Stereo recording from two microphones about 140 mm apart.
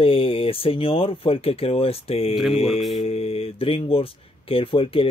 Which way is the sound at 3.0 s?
45° left (ahead or behind).